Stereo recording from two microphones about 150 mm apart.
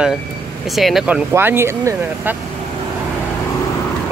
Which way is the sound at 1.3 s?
15° right (ahead or behind).